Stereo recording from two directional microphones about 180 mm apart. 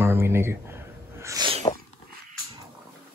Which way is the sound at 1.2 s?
20° right (ahead or behind).